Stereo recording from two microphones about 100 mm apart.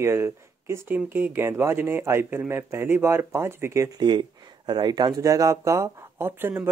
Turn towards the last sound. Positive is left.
turn(degrees=-20)  # may be behind; listen again after turning